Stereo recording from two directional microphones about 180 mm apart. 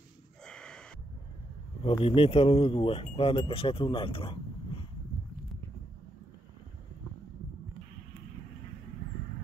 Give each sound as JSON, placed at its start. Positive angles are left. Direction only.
{"t": 0.5, "sound": "gasp", "side_deg": 5}
{"t": 1.8, "sound": "speech", "side_deg": 30}